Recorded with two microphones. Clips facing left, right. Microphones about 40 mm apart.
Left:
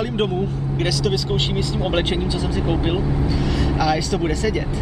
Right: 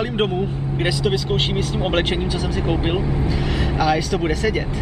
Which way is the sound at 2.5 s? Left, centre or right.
Centre.